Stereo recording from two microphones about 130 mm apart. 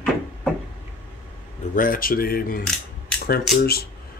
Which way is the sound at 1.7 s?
90° left.